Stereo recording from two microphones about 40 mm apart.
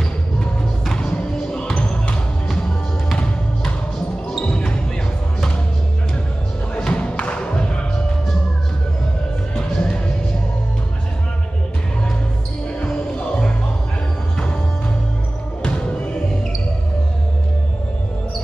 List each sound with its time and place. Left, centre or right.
0.9 s music: centre
2.4 s music: centre
4.3 s basketball bounce: left
6.8 s music: left
9.6 s music: centre
12.8 s music: centre